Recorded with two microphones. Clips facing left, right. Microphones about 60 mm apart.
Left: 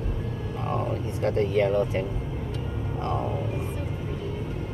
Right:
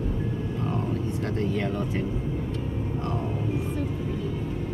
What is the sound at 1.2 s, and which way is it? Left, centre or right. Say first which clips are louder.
Speech: left 8 dB; left.